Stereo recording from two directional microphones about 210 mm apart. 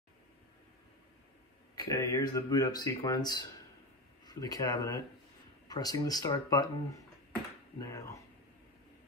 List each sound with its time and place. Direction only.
1.9 s speech: 15° left (ahead or behind)